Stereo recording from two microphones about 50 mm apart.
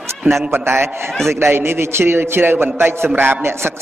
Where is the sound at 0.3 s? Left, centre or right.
Right.